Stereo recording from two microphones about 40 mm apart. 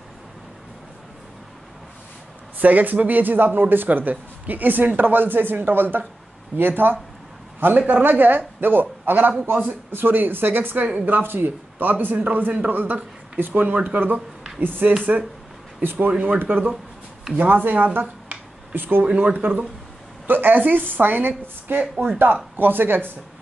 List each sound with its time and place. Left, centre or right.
2.6 s speech: right
16.1 s speech: right
19.1 s speech: right
20.2 s speech: right